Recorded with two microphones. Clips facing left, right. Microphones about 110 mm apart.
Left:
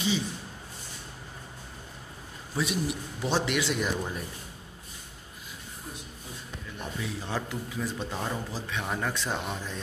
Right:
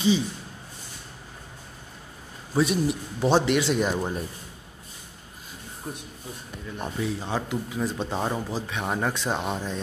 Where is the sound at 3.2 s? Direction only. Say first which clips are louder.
Right 7 dB; 40° right (ahead or behind).